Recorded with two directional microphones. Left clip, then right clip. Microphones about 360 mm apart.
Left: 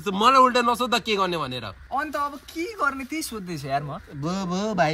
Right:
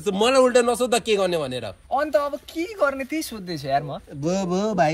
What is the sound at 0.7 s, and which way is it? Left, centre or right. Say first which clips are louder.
A man's voice: right 2 dB; centre.